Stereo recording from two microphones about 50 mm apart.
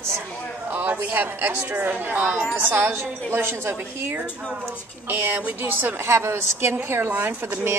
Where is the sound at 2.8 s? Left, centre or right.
Right.